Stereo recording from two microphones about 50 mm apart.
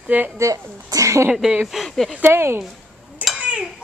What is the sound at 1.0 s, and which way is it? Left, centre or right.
Speech, right.